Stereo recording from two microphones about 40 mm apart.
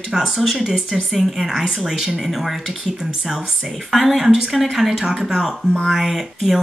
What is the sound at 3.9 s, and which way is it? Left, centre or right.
Speech, centre.